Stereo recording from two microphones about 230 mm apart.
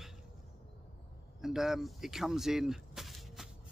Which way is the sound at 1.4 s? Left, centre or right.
Centre.